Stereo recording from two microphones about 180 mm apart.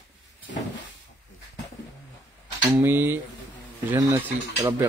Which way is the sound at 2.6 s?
10° right (ahead or behind).